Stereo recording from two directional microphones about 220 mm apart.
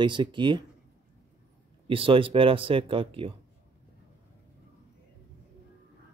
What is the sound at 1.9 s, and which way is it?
Speech, 25° right (ahead or behind).